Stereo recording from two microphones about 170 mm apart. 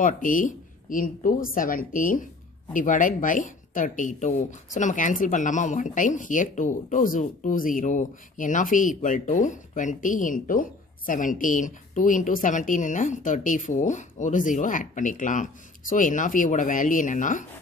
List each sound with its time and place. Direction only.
0.0 s speech: 50° left (ahead or behind)